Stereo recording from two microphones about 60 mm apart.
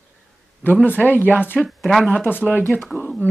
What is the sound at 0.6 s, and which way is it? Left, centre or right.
Speech, left.